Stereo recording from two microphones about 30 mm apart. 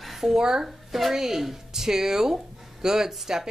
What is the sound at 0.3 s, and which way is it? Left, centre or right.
Speech, centre.